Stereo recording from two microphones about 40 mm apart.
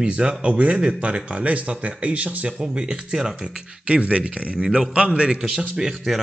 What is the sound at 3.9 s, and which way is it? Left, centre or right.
Speech, right.